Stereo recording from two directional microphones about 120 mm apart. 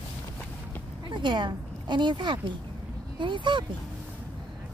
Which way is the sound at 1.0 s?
40° right (ahead or behind).